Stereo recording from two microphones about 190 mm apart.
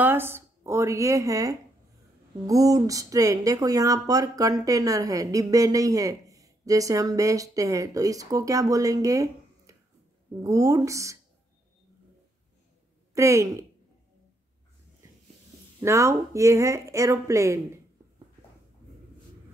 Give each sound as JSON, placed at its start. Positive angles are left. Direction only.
{"t": 0.0, "sound": "speech", "side_deg": -10}
{"t": 13.1, "sound": "speech", "side_deg": -15}
{"t": 15.8, "sound": "speech", "side_deg": -15}